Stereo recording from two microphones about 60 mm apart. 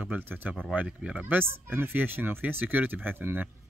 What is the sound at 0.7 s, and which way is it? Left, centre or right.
Speech, centre.